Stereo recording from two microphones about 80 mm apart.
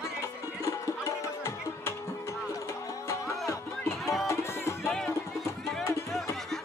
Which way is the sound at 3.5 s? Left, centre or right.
Left.